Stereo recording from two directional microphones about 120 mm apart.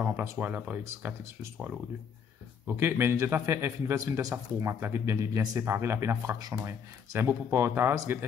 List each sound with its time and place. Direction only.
0.0 s a man's voice: 15° right (ahead or behind)